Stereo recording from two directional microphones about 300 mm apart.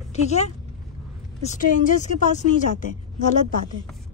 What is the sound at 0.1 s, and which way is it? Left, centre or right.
A woman's voice, left.